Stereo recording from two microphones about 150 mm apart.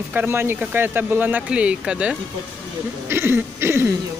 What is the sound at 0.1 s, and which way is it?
Speech, 15° right (ahead or behind).